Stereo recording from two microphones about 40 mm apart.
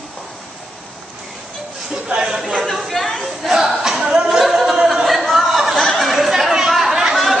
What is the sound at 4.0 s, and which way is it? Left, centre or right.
A capella, centre.